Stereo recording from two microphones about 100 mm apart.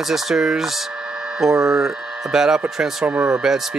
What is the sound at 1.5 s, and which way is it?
Speech, 30° right (ahead or behind).